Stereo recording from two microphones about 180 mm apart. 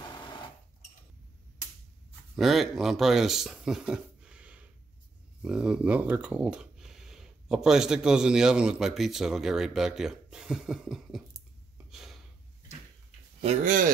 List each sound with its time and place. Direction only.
0.1 s sewing machine: 25° left (ahead or behind)
2.3 s speech: centre (ahead or behind)
11.9 s gasp: centre (ahead or behind)
13.4 s speech: 40° right (ahead or behind)